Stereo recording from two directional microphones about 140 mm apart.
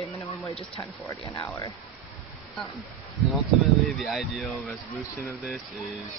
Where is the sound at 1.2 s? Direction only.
25° left (ahead or behind).